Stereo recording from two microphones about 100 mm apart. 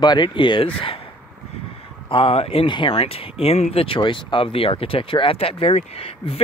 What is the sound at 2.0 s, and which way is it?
Speech, 65° left (ahead or behind).